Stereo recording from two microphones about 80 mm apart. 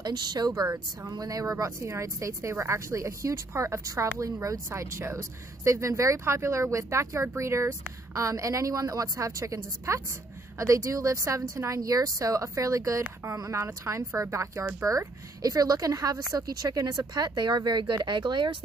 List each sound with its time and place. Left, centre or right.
0.0 s speech: right
0.5 s speech: right